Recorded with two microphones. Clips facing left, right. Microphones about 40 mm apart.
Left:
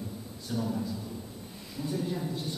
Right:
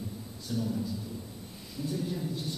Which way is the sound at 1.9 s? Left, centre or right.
Centre.